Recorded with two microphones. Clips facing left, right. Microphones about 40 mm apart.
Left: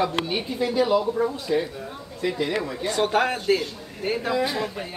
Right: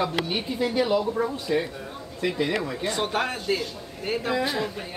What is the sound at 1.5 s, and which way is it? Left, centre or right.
A man's voice, centre.